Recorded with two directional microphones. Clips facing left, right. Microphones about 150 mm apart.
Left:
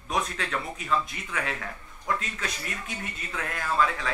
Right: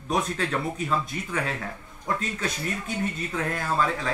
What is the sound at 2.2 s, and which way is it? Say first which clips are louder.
Speech: right 5 dB; 35° right (ahead or behind).